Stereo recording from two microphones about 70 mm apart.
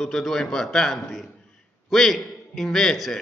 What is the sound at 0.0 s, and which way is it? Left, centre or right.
A man's voice, centre.